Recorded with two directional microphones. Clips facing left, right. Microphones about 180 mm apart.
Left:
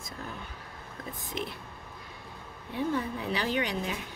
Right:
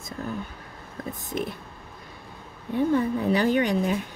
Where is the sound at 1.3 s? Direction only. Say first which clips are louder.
Right 6 dB; 50° right (ahead or behind).